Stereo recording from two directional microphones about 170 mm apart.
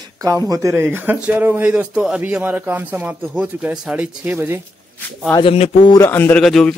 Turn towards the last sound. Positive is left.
turn(degrees=5)  # may be behind; listen again after turning